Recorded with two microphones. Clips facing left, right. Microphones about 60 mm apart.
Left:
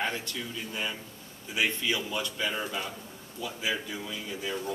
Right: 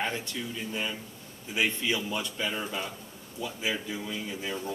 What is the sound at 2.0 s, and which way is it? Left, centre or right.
Speech, centre.